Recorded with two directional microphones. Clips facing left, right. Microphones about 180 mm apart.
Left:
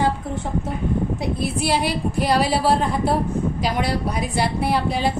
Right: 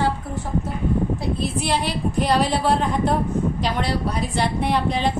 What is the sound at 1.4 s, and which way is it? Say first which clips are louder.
A woman's voice: left 4 dB; 10° left (ahead or behind).